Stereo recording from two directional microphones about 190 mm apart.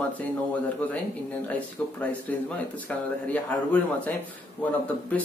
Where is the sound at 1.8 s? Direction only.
5° left (ahead or behind).